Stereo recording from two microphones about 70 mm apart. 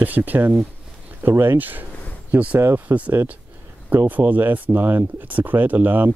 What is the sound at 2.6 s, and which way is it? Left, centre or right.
Speech, right.